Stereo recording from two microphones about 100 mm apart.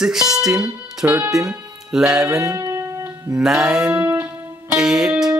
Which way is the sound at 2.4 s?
30° right (ahead or behind).